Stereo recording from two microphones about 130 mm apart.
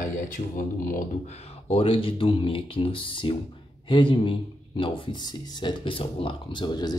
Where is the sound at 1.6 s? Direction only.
45° left (ahead or behind).